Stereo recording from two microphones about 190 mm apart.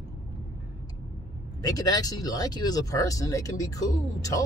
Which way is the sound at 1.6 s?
20° left (ahead or behind).